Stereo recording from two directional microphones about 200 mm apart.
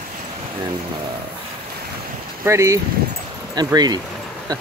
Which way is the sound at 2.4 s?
15° right (ahead or behind).